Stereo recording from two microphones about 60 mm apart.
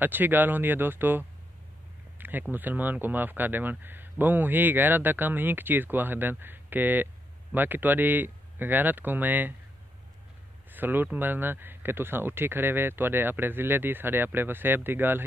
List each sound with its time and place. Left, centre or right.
0.0 s speech: right
2.1 s a sound: right
2.5 s speech: right
10.7 s speech: right